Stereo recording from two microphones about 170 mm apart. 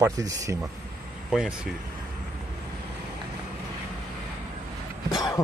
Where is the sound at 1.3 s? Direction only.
Centre (ahead or behind).